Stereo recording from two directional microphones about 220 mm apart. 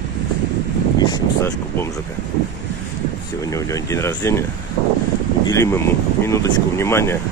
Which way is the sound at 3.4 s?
15° left (ahead or behind).